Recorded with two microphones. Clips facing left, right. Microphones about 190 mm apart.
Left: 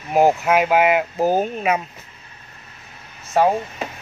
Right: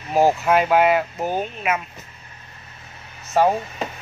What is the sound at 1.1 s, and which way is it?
Speech, 35° left (ahead or behind).